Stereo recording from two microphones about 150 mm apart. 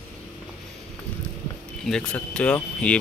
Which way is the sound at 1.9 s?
5° left (ahead or behind).